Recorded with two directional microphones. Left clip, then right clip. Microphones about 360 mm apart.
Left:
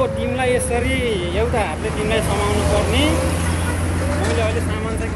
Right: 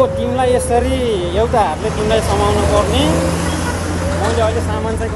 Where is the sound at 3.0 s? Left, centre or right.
Right.